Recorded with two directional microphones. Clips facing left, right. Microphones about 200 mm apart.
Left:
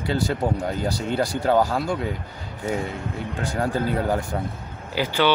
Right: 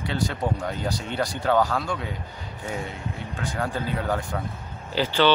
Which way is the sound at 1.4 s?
30° left (ahead or behind).